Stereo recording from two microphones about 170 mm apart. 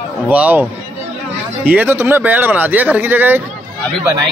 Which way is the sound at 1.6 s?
10° right (ahead or behind).